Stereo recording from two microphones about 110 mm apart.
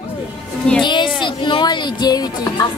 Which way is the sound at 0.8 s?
45° left (ahead or behind).